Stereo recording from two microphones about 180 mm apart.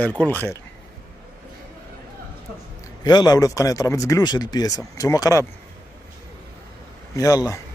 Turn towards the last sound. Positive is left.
turn(degrees=20)  # may be behind; listen again after turning